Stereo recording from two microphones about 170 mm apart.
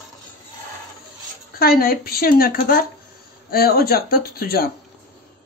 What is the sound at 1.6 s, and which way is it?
Speech, 60° left (ahead or behind).